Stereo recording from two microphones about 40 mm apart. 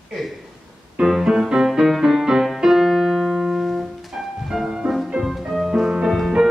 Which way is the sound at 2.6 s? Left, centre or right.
Centre.